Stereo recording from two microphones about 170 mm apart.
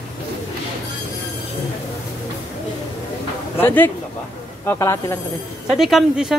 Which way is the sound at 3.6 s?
10° left (ahead or behind).